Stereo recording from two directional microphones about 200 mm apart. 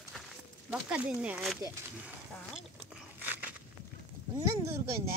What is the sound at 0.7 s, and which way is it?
Speech, 5° right (ahead or behind).